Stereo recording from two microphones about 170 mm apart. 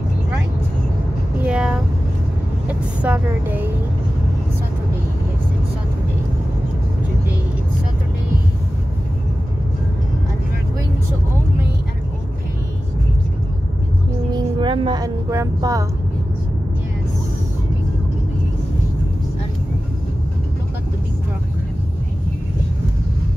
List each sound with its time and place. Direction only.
1.4 s a sound: 5° right (ahead or behind)
3.0 s speech: 10° right (ahead or behind)
14.3 s music: 30° right (ahead or behind)